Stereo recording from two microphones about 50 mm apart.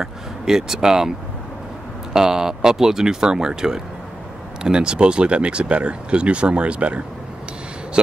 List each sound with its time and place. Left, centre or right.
0.0 s speech: centre
2.1 s speech: centre